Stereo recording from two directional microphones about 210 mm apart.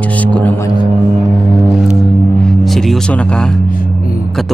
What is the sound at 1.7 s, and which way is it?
Music, centre (ahead or behind).